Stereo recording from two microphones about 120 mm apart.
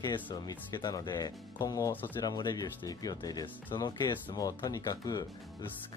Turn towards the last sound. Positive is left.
turn(degrees=30)  # may be behind; listen again after turning